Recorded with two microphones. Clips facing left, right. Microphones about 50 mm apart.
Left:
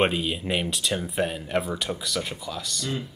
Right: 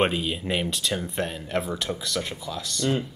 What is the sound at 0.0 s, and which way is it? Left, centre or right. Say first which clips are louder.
Speech: even; centre.